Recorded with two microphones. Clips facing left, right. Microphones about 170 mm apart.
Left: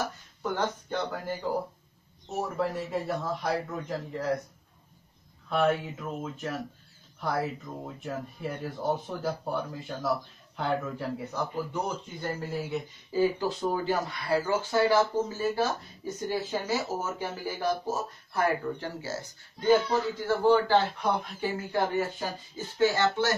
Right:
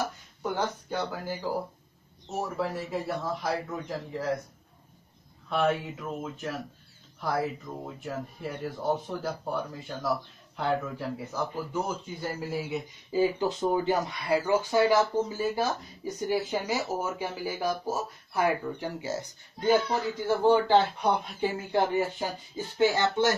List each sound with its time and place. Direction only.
0.4 s speech: 10° right (ahead or behind)
5.5 s speech: centre (ahead or behind)
13.2 s speech: 20° right (ahead or behind)